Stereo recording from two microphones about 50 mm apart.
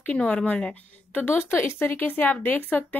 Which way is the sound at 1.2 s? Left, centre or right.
Left.